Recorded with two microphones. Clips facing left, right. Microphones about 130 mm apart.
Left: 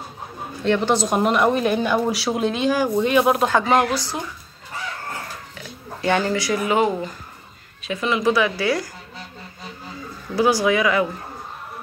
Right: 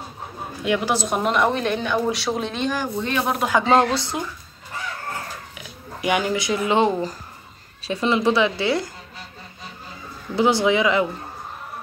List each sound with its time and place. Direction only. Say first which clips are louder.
0.7 s speech: left 3 dB; 5° right (ahead or behind)
3.6 s speech: right 1 dB; 30° right (ahead or behind)
5.9 s speech: left 1 dB; 15° right (ahead or behind)
10.3 s speech: even; 25° right (ahead or behind)